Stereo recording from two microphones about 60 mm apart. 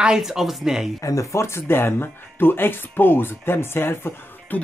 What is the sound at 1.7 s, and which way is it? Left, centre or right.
Speech, left.